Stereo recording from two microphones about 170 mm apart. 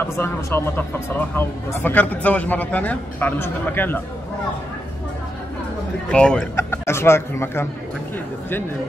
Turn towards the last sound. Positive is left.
turn(degrees=15)  # may be behind; listen again after turning